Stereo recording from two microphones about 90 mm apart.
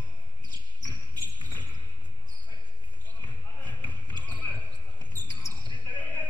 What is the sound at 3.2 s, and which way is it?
Basketball bounce, 15° left (ahead or behind).